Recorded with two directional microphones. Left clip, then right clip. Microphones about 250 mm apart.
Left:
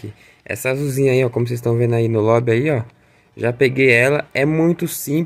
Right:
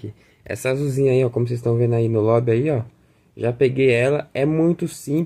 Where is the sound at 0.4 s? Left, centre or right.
Centre.